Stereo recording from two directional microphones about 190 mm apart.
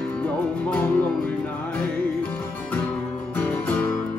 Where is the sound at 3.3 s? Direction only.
10° left (ahead or behind).